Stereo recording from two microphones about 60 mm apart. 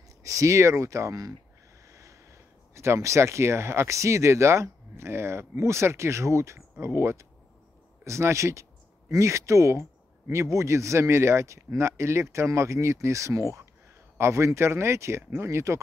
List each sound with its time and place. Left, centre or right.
0.2 s speech: right
1.9 s speech: right
14.1 s speech: right